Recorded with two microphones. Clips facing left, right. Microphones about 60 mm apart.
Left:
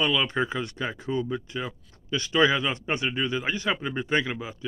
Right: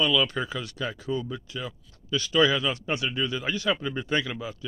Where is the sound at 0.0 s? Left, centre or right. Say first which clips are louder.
Even; left.